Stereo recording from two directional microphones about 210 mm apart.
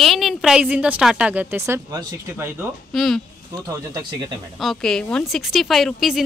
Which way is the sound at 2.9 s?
Centre (ahead or behind).